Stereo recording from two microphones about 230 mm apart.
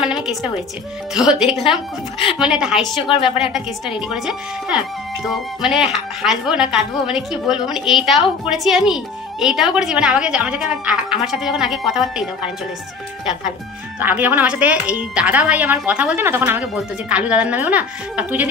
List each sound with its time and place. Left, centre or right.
0.0 s music: centre
1.1 s speech: centre
3.2 s speech: left
4.1 s speech: centre
13.9 s speech: centre